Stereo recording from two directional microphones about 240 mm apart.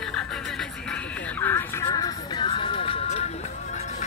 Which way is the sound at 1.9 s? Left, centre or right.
Centre.